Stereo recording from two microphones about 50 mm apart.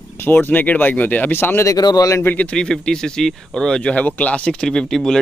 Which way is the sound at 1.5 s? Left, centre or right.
Left.